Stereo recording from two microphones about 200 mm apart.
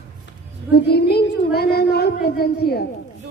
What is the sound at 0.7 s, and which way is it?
A child's voice, 55° left (ahead or behind).